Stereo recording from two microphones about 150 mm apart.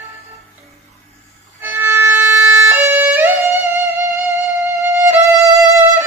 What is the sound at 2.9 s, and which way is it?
Music, 15° right (ahead or behind).